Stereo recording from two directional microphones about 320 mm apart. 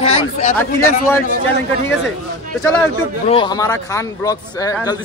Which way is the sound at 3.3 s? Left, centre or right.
Centre.